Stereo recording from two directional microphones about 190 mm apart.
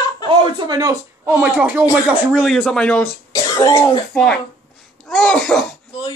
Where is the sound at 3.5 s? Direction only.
20° left (ahead or behind).